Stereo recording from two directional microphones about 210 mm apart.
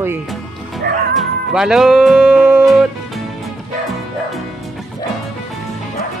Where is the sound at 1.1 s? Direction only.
Centre (ahead or behind).